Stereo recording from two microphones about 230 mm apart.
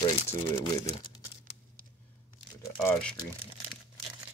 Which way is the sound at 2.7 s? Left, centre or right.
Centre.